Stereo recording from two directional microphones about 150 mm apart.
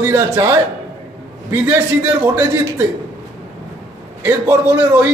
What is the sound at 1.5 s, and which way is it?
A man's voice, 15° right (ahead or behind).